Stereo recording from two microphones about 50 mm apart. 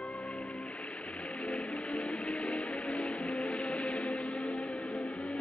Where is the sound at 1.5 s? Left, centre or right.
Centre.